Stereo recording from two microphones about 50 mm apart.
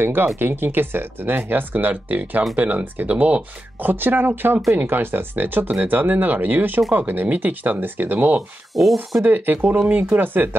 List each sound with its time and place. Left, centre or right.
0.0 s speech: right
3.8 s speech: right
8.4 s speech: centre
9.2 s speech: right